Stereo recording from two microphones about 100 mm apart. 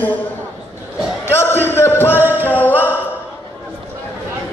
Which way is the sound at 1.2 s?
25° left (ahead or behind).